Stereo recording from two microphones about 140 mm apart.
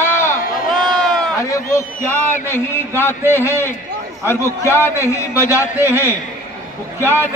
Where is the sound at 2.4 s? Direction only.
15° left (ahead or behind).